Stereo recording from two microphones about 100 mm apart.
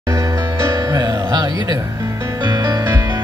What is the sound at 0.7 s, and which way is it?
Music, 40° right (ahead or behind).